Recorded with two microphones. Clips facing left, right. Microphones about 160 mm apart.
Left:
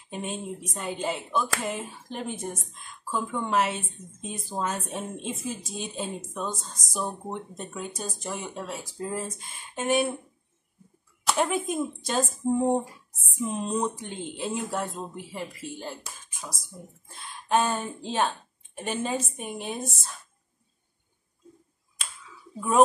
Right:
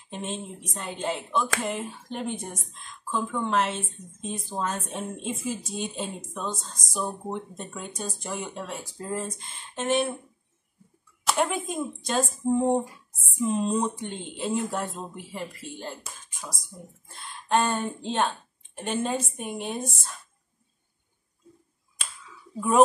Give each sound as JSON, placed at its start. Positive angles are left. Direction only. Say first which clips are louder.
{"t": 0.1, "sound": "speech", "louder": "left 1 dB", "side_deg": 5}
{"t": 11.2, "sound": "speech", "louder": "left 1 dB", "side_deg": 0}